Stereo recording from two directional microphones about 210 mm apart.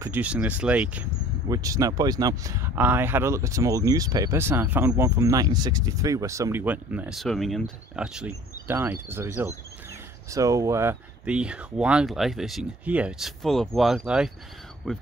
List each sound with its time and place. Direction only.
0.0 s speech: 10° right (ahead or behind)